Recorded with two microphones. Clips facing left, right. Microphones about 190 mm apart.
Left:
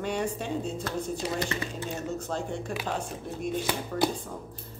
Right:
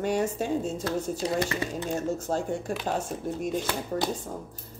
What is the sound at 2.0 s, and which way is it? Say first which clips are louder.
Speech: right 4 dB; 45° right (ahead or behind).